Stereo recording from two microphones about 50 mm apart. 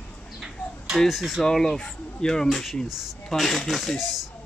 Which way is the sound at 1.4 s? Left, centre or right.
Centre.